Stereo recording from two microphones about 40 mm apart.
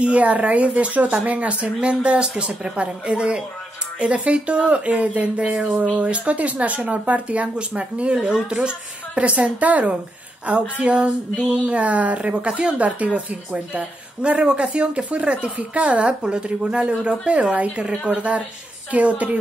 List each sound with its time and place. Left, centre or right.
0.0 s speech: right
5.4 s speech: centre
5.7 s a woman's voice: right
12.2 s a woman's voice: right